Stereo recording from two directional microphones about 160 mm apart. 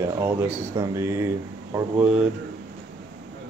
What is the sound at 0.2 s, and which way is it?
Speech, 15° right (ahead or behind).